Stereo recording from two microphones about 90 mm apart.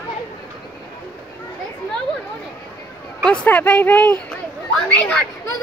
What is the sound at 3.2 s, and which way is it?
Speech, 10° left (ahead or behind).